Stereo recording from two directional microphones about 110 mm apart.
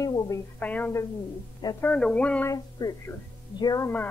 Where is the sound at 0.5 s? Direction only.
15° left (ahead or behind).